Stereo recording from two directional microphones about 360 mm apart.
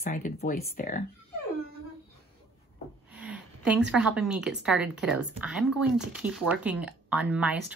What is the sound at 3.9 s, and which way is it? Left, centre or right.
Speech, centre.